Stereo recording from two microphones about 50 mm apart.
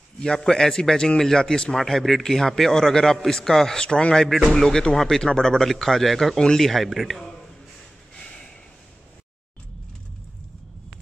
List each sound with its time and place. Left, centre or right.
0.2 s a man's voice: centre
8.2 s snort: centre